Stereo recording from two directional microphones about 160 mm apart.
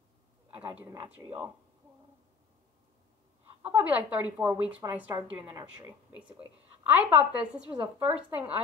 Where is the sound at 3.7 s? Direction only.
10° right (ahead or behind).